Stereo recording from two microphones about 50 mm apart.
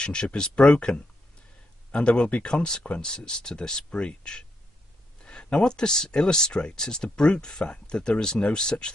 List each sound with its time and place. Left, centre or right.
0.0 s speech: left